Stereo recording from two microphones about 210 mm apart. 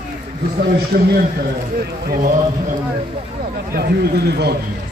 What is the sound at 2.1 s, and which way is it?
Speech, 40° right (ahead or behind).